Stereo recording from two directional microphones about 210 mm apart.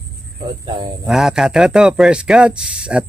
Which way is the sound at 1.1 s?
Centre (ahead or behind).